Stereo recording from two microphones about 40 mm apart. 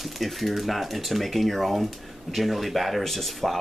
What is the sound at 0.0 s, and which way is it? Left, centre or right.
Speech, centre.